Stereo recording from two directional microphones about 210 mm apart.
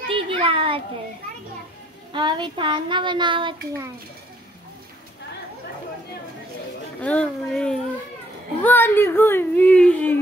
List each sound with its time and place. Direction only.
0.1 s a sound: 25° right (ahead or behind)
2.1 s speech: 20° right (ahead or behind)
7.0 s speech: 5° left (ahead or behind)